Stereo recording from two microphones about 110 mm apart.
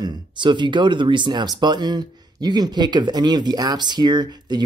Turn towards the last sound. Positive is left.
turn(degrees=-40)  # may be behind; listen again after turning